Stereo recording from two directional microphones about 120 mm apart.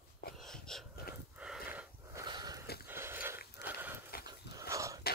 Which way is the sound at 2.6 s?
20° right (ahead or behind).